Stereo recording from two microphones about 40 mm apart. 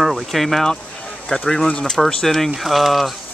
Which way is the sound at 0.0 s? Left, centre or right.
Centre.